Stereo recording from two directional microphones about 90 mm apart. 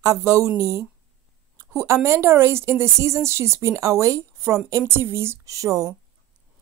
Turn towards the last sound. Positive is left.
turn(degrees=-40)  # may be behind; listen again after turning